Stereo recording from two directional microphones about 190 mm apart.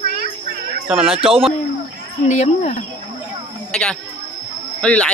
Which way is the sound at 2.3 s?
35° left (ahead or behind).